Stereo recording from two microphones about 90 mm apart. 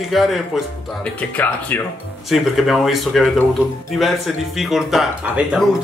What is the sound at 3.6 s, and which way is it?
Speech, 15° right (ahead or behind).